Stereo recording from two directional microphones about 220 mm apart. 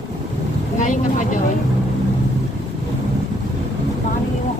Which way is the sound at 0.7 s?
35° left (ahead or behind).